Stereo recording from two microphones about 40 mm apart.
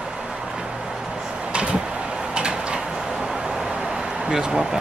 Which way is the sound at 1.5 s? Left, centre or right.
Right.